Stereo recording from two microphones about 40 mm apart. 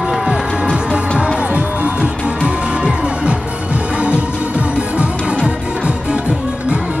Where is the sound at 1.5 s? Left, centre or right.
Right.